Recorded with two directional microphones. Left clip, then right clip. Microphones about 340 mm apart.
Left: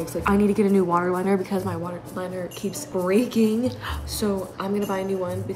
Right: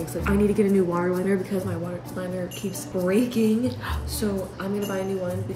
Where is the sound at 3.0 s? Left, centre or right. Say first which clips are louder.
Left 1 dB; centre.